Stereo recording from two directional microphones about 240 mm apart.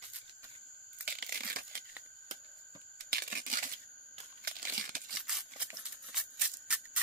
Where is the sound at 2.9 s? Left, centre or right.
Right.